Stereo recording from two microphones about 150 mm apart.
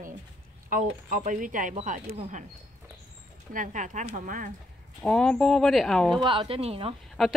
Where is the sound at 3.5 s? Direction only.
60° right (ahead or behind).